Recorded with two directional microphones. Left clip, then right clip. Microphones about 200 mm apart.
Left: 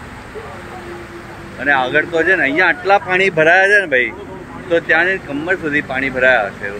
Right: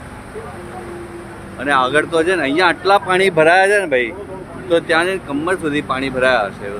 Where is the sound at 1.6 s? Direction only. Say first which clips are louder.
Even; 10° right (ahead or behind).